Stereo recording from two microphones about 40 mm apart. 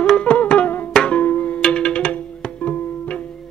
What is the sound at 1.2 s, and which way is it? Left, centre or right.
Music, left.